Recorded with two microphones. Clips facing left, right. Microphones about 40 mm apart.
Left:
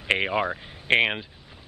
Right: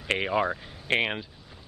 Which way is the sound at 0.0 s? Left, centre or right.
Left.